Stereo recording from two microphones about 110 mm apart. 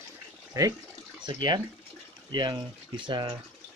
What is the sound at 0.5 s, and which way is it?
Speech, 25° right (ahead or behind).